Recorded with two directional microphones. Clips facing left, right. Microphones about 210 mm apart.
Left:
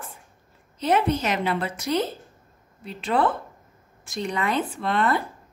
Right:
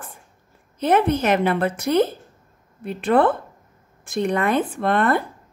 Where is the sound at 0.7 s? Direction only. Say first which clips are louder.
Right 4 dB; 55° right (ahead or behind).